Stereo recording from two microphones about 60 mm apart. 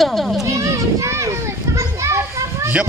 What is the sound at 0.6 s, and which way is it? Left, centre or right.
Children playing, right.